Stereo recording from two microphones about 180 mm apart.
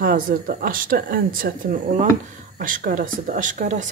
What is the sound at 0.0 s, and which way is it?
Speech, 55° right (ahead or behind).